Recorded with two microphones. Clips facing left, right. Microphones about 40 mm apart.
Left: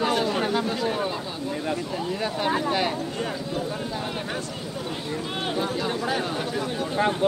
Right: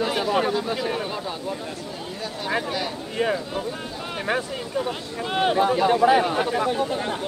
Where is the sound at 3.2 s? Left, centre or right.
Right.